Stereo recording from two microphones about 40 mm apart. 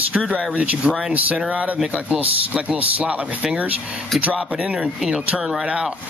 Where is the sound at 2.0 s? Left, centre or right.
Right.